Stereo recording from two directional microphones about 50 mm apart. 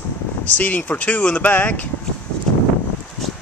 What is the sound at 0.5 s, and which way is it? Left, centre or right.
Speech, left.